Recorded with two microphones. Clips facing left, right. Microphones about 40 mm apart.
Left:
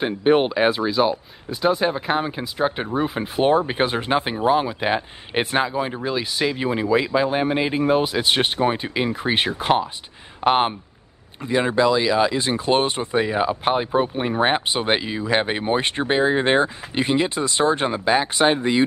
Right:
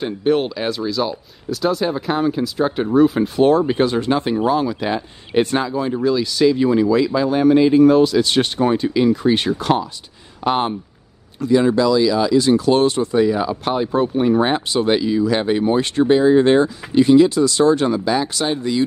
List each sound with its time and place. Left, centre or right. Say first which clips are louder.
0.0 s speech: even; left